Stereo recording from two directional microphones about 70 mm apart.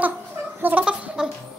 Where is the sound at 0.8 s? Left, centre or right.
Centre.